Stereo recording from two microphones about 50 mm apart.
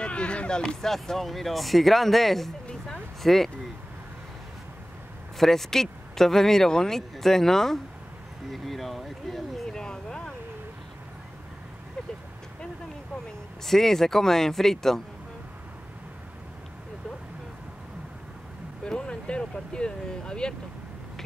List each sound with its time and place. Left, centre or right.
0.0 s speech: left
0.6 s speech: centre
5.4 s speech: centre
9.7 s a sound: centre
13.7 s speech: centre
18.9 s vehicle: centre